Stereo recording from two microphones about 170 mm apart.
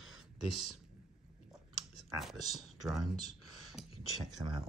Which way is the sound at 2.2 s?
Centre (ahead or behind).